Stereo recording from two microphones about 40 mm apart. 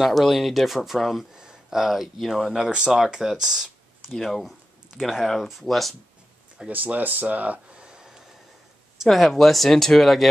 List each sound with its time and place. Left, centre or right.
0.0 s speech: centre
1.3 s a sound: centre
2.1 s speech: centre
4.2 s speech: centre
6.6 s speech: right
7.0 s speech: right
7.7 s a sound: right
9.0 s speech: centre